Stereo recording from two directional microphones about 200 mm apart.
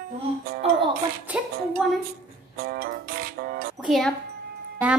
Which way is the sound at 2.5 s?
50° right (ahead or behind).